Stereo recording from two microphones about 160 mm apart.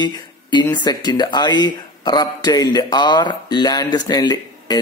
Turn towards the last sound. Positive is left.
turn(degrees=25)  # may be behind; listen again after turning